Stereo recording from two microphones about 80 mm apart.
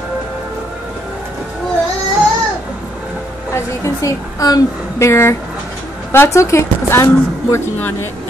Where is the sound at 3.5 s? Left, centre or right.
Left.